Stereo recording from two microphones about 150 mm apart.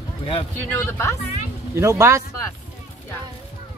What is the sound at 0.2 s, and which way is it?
Speech, 40° left (ahead or behind).